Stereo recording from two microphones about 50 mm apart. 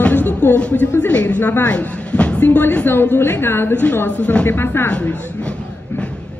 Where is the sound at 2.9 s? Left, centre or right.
Left.